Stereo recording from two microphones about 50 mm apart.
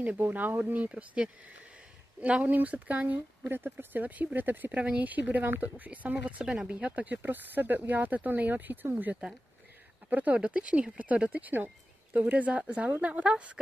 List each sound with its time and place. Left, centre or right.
0.2 s a woman's voice: right
3.4 s speech: right
6.4 s speech: centre
6.7 s a woman's voice: right
7.2 s a woman's voice: right